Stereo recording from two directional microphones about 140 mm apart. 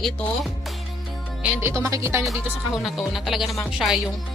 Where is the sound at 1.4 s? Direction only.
20° right (ahead or behind).